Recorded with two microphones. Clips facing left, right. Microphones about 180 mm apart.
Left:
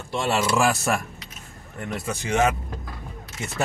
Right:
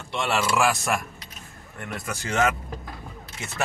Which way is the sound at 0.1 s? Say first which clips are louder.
Left 2 dB; 30° left (ahead or behind).